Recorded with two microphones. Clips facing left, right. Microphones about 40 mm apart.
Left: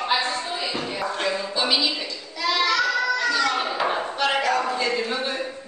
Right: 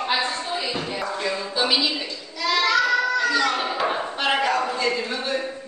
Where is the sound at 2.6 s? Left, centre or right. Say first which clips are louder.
Right 3 dB; centre.